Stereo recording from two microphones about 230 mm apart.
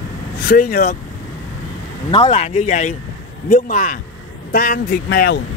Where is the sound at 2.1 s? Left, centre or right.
Left.